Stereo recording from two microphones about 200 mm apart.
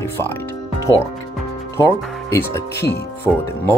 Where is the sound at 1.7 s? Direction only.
15° left (ahead or behind).